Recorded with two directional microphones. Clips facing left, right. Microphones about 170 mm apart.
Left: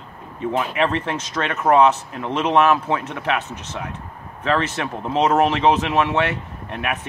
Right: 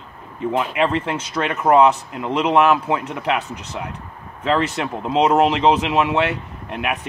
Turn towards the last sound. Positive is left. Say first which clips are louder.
# right 1 dB
turn(degrees=-15)  # may be behind; listen again after turning